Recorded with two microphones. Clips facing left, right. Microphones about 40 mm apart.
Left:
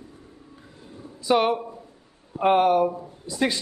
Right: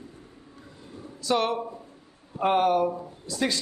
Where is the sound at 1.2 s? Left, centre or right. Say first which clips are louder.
Left 4 dB; centre.